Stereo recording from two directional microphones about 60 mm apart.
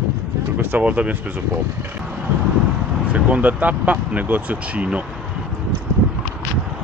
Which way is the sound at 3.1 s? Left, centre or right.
Right.